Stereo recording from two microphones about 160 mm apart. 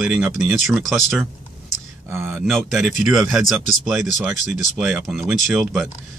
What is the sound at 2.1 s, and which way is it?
Speech, 15° right (ahead or behind).